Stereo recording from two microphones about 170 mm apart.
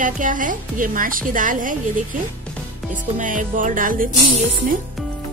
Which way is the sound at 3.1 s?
50° right (ahead or behind).